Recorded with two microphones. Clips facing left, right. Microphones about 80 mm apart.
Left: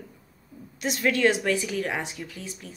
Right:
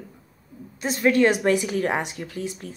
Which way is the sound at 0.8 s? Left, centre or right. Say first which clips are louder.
Right 4 dB; right.